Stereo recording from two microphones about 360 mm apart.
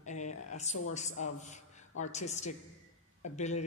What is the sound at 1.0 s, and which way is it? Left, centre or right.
A woman's voice, centre.